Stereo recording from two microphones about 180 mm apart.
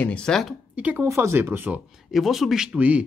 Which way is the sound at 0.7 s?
10° right (ahead or behind).